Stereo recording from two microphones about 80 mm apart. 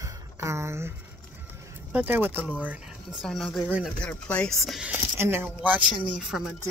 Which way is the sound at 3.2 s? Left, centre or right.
Centre.